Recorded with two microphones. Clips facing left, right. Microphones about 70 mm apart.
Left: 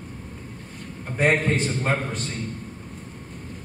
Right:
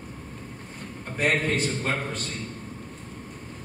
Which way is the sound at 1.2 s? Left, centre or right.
Left.